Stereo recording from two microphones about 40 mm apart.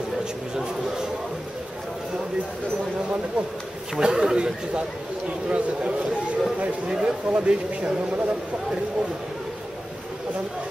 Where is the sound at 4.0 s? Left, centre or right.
Centre.